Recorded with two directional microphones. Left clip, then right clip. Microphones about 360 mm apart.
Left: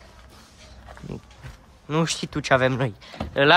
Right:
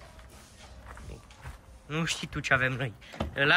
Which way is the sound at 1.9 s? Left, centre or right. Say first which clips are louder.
Left 7 dB; centre.